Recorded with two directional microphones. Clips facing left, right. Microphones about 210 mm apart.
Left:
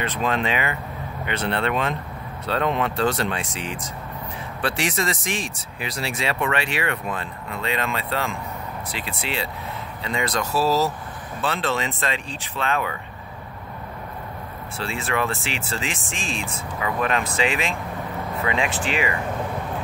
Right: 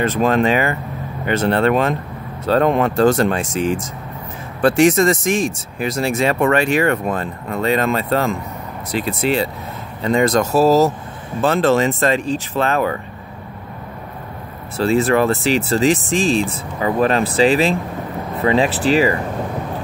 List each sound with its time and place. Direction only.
0.0 s speech: 45° right (ahead or behind)
14.8 s speech: 40° right (ahead or behind)